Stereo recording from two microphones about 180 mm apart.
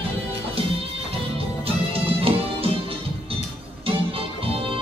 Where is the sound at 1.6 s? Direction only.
30° right (ahead or behind).